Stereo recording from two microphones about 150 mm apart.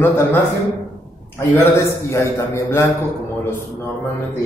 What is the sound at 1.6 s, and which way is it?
A man's voice, 15° left (ahead or behind).